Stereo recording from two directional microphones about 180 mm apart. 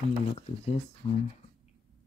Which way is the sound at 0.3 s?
35° left (ahead or behind).